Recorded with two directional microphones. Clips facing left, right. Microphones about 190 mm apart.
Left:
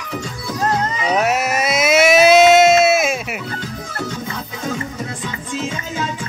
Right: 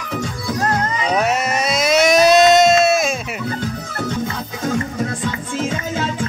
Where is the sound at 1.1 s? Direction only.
5° left (ahead or behind).